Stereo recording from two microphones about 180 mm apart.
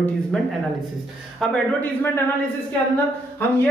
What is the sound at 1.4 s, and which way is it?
Speech, 10° left (ahead or behind).